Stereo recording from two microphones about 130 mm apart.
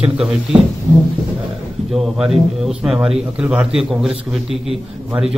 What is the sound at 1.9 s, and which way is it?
Speech, 5° right (ahead or behind).